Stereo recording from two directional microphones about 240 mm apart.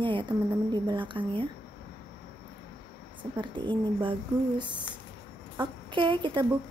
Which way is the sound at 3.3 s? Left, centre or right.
Centre.